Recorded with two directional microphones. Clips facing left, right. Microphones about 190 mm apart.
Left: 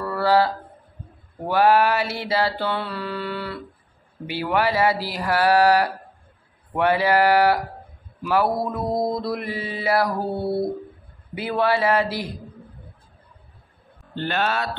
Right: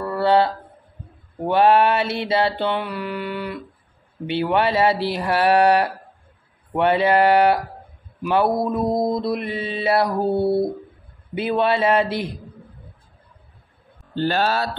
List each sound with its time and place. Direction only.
0.0 s a sound: 20° right (ahead or behind)
1.4 s mantra: 20° right (ahead or behind)
8.2 s speech: 20° right (ahead or behind)
9.1 s mantra: 20° right (ahead or behind)
10.3 s speech: centre (ahead or behind)
11.3 s mantra: 20° right (ahead or behind)
14.1 s speech: 35° right (ahead or behind)